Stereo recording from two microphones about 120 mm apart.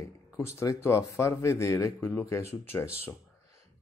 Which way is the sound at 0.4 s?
25° left (ahead or behind).